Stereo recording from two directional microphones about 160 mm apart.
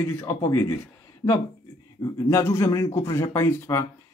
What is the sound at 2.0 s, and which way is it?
Speech, 25° left (ahead or behind).